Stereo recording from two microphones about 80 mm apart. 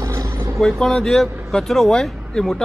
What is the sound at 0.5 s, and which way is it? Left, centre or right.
Speech, centre.